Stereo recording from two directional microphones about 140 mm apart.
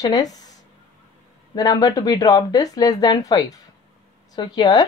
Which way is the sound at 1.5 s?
25° left (ahead or behind).